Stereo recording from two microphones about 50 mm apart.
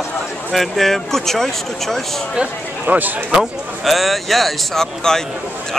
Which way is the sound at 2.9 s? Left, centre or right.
Right.